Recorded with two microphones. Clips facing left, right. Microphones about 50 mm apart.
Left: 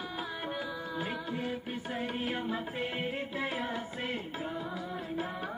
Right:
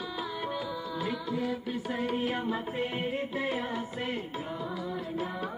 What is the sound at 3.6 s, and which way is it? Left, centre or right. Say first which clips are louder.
Music: right 2 dB; left.